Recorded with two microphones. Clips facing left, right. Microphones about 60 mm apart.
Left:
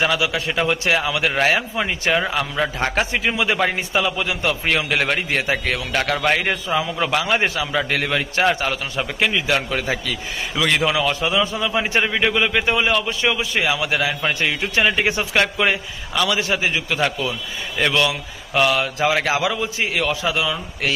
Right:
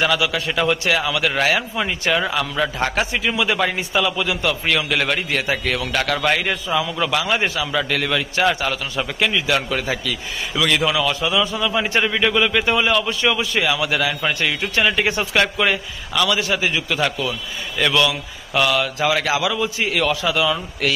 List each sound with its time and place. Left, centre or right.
0.0 s a man's voice: centre
9.3 s a man's voice: centre
12.0 s a man's voice: centre